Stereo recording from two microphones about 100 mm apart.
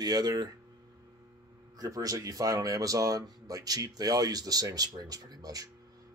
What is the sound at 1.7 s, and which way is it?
Speech, 35° right (ahead or behind).